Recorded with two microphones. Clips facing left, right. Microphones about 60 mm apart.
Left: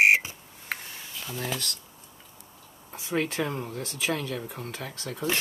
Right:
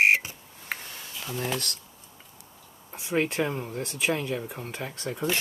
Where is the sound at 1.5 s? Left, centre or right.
Right.